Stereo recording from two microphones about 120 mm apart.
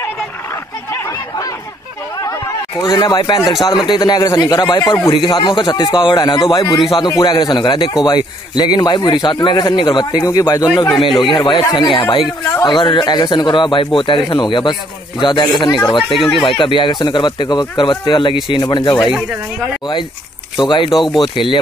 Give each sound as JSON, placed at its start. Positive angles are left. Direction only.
{"t": 2.8, "sound": "speech", "side_deg": 40}
{"t": 16.2, "sound": "speech", "side_deg": 0}
{"t": 16.4, "sound": "speech", "side_deg": 45}
{"t": 20.5, "sound": "speech", "side_deg": 40}